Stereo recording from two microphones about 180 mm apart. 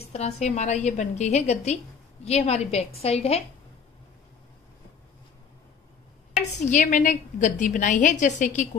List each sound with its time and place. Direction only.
0.0 s a woman's voice: 35° left (ahead or behind)
6.6 s a woman's voice: 45° left (ahead or behind)